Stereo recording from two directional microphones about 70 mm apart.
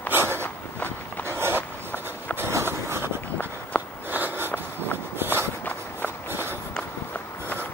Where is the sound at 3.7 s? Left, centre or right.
Centre.